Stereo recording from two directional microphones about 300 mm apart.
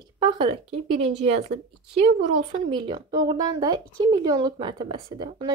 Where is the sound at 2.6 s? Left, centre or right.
Centre.